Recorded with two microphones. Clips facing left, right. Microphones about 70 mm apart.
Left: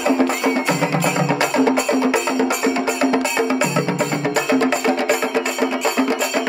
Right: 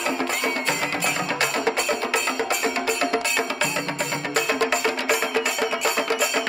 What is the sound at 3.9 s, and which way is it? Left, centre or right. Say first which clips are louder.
Music: left 7 dB; centre.